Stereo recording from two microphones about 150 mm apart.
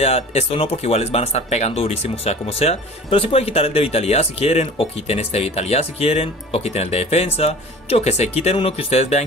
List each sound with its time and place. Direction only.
0.0 s speech: 45° left (ahead or behind)